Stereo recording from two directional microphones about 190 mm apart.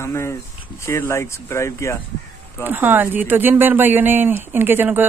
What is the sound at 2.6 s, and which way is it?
Speech, 10° right (ahead or behind).